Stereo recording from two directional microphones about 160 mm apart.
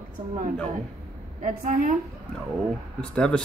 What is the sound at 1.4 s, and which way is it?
Speech, 55° right (ahead or behind).